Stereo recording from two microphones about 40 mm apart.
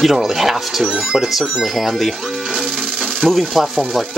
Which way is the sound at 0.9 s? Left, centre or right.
Centre.